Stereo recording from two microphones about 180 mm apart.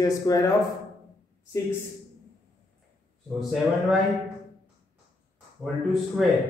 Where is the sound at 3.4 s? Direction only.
Centre (ahead or behind).